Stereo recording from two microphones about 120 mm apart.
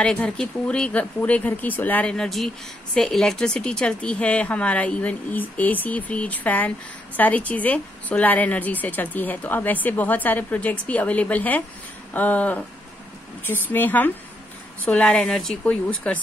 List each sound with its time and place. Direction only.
0.0 s speech: 5° left (ahead or behind)